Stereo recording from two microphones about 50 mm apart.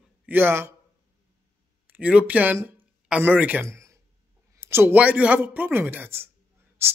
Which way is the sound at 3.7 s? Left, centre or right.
Right.